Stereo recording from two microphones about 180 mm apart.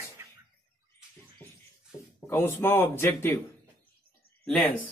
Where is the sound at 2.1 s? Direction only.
15° left (ahead or behind).